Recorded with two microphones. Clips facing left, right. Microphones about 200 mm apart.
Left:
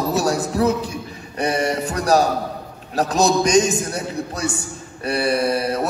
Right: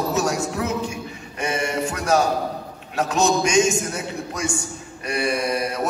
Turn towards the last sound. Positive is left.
turn(degrees=35)  # may be behind; listen again after turning